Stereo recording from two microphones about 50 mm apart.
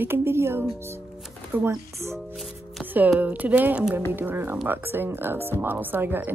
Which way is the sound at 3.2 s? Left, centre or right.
Right.